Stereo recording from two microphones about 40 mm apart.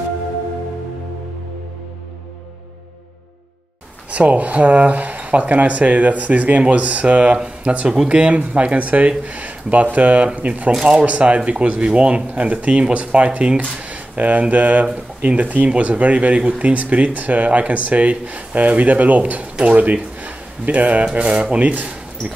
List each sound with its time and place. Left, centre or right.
4.1 s speech: right
10.7 s speech: centre
11.1 s speech: right